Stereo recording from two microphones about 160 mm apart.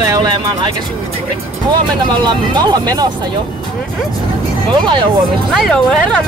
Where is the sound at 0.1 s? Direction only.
25° right (ahead or behind).